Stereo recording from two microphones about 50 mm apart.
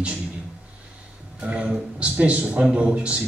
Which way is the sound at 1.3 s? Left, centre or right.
Right.